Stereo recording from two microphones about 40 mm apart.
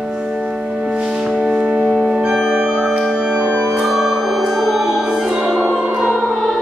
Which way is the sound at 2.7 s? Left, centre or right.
Centre.